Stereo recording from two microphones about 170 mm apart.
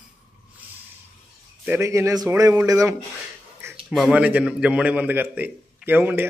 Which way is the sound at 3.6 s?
15° right (ahead or behind).